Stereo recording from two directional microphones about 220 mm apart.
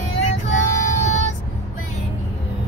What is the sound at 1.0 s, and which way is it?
Vehicle, 30° left (ahead or behind).